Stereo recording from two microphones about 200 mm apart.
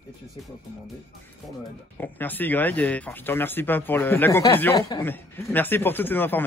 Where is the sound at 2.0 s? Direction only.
10° left (ahead or behind).